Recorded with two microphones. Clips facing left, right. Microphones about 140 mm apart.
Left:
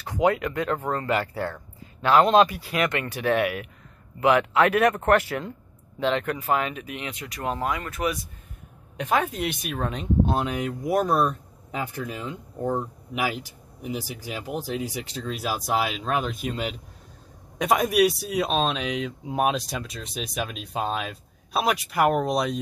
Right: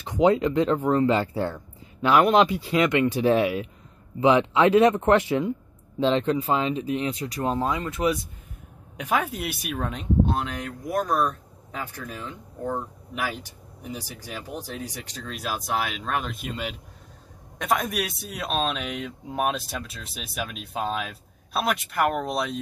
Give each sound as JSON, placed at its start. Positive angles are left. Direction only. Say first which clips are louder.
{"t": 0.0, "sound": "speech", "louder": "right 3 dB", "side_deg": -20}
{"t": 5.9, "sound": "speech", "louder": "right 3 dB", "side_deg": -30}
{"t": 8.9, "sound": "speech", "louder": "left 1 dB", "side_deg": -10}
{"t": 13.8, "sound": "speech", "louder": "left 4 dB", "side_deg": 10}